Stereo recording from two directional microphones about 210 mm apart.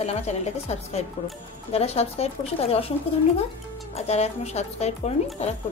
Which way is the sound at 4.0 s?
30° left (ahead or behind).